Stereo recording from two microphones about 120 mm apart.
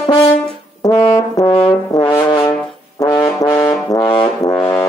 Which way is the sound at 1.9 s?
40° left (ahead or behind).